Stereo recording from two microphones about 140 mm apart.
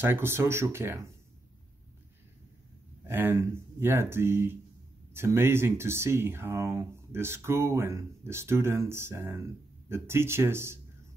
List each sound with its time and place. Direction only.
0.0 s speech: 15° right (ahead or behind)
3.1 s speech: 15° right (ahead or behind)